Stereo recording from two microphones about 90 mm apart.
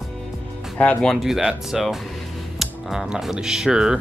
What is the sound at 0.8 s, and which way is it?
Speech, 10° left (ahead or behind).